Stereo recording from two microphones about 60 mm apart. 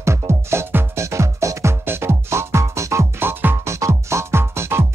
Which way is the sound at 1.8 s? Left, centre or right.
Right.